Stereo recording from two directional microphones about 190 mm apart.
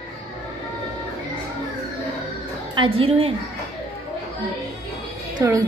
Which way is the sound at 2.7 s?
30° right (ahead or behind).